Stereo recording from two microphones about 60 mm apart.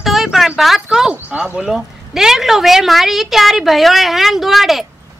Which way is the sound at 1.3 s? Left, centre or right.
Right.